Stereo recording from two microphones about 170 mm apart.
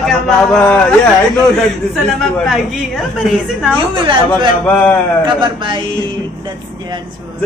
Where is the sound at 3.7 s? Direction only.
30° right (ahead or behind).